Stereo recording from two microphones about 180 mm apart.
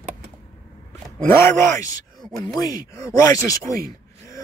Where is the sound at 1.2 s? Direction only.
15° left (ahead or behind).